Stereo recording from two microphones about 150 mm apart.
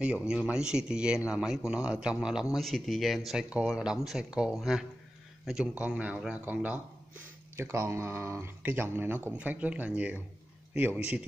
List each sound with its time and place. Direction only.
0.0 s speech: 5° right (ahead or behind)